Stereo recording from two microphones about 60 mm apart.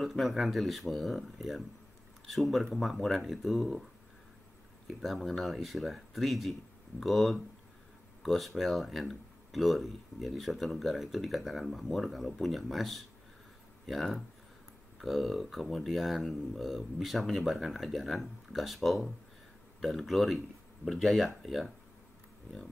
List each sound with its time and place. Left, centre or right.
0.0 s speech: centre
4.8 s speech: centre